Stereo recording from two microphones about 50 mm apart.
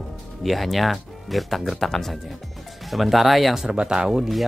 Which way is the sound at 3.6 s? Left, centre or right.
Centre.